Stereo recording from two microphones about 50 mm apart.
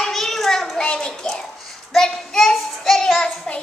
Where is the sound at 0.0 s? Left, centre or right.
Centre.